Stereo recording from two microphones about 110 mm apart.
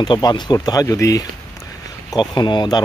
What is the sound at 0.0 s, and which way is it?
Speech, 40° left (ahead or behind).